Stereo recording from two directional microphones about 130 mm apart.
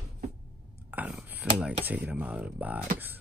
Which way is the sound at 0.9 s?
10° right (ahead or behind).